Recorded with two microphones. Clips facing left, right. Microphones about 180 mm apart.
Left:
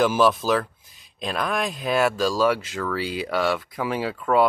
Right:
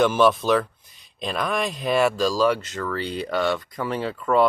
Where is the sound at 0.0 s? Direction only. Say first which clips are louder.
Right 1 dB; centre (ahead or behind).